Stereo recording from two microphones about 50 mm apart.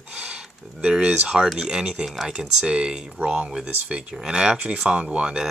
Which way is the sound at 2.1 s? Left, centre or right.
Centre.